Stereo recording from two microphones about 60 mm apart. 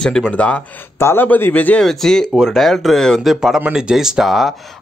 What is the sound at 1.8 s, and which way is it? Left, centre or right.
Speech, centre.